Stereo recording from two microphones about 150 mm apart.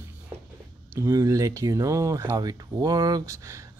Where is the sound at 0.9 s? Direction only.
20° right (ahead or behind).